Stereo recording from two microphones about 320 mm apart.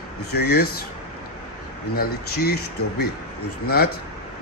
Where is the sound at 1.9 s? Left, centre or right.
Left.